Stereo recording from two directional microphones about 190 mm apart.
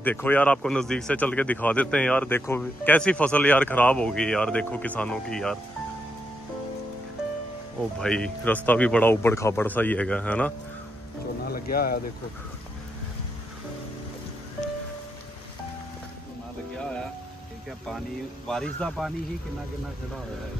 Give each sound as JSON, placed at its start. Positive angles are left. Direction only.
{"t": 0.0, "sound": "speech", "side_deg": 10}
{"t": 8.0, "sound": "speech", "side_deg": 5}
{"t": 11.4, "sound": "speech", "side_deg": 50}
{"t": 18.5, "sound": "speech", "side_deg": 5}